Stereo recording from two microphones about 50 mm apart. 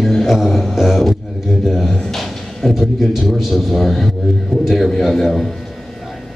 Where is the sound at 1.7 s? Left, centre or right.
Centre.